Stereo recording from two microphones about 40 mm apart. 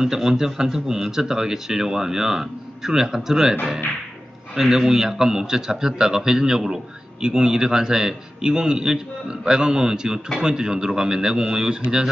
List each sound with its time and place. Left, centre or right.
0.0 s a man's voice: centre
4.6 s a man's voice: centre